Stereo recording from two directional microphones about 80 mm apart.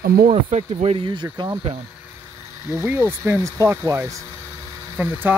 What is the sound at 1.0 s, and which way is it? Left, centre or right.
Speech, right.